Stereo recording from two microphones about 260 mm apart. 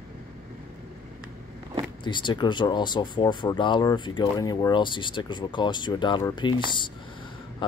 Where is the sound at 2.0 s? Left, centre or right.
Centre.